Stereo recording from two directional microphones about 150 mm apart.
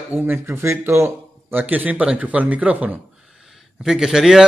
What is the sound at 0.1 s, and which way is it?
A man's voice, 15° right (ahead or behind).